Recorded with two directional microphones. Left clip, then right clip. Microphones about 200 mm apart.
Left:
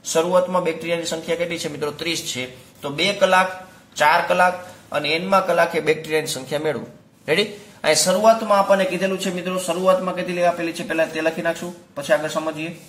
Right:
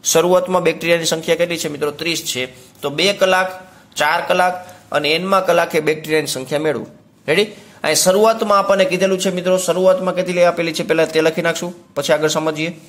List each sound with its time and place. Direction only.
0.0 s a man's voice: 40° right (ahead or behind)